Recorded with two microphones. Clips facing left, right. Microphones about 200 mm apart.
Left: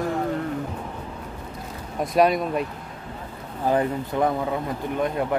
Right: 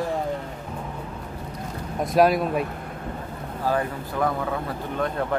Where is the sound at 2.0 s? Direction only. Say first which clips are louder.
Right 1 dB; centre (ahead or behind).